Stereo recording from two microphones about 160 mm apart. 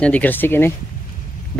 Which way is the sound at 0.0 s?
10° left (ahead or behind).